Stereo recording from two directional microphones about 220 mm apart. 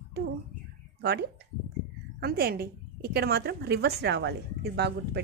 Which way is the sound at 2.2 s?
45° right (ahead or behind).